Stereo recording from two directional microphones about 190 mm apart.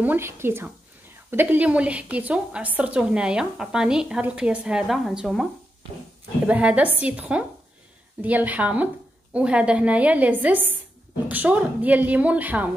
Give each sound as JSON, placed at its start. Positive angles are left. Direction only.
{"t": 0.0, "sound": "a woman's voice", "side_deg": -10}